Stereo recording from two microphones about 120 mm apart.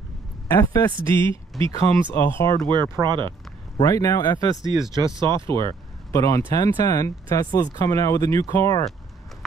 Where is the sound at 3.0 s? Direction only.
40° right (ahead or behind).